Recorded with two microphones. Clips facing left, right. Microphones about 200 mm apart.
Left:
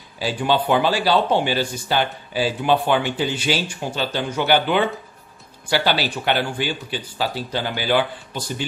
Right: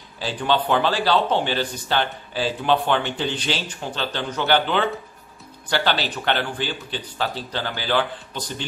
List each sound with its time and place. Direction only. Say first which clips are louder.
0.2 s speech: left 2 dB; 10° left (ahead or behind)